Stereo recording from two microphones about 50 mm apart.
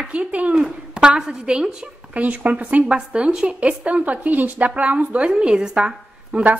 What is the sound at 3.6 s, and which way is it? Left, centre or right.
A woman's voice, right.